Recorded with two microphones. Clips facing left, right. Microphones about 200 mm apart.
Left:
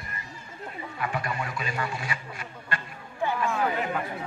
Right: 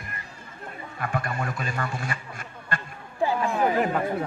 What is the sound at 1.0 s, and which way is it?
Speech, 50° right (ahead or behind).